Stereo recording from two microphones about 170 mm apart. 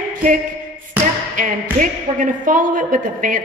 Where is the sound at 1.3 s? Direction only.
50° right (ahead or behind).